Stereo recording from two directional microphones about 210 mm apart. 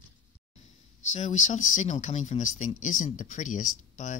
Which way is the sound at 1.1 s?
35° left (ahead or behind).